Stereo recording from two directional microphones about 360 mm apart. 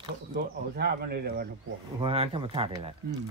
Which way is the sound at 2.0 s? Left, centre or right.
Centre.